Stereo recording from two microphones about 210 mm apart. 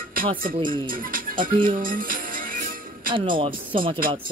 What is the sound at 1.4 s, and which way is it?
Speech, 40° right (ahead or behind).